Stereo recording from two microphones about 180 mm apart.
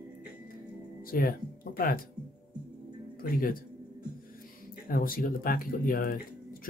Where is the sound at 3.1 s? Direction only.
50° left (ahead or behind).